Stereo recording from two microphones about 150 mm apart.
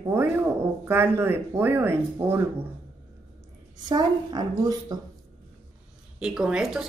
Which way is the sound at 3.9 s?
30° right (ahead or behind).